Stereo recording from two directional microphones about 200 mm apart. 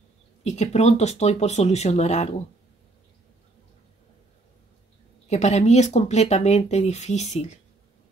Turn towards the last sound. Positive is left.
turn(degrees=35)  # may be behind; listen again after turning